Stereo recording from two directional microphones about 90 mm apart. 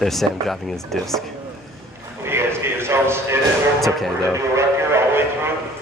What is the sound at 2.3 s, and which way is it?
A man's voice, 25° right (ahead or behind).